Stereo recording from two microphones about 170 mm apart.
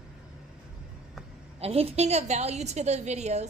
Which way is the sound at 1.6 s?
35° right (ahead or behind).